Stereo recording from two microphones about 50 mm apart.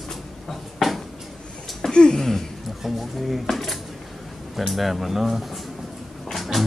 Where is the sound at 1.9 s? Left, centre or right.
Centre.